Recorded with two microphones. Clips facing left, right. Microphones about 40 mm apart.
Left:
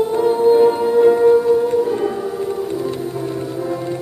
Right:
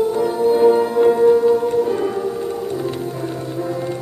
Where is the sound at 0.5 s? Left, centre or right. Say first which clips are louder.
Left 1 dB; centre.